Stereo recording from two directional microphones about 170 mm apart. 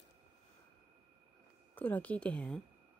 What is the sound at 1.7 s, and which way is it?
Speech, 10° left (ahead or behind).